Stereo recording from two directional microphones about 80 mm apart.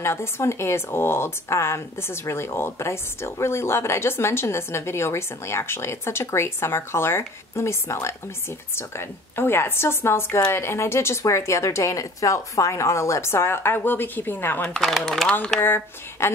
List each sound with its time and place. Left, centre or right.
0.0 s speech: left
14.7 s speech: centre
15.6 s speech: left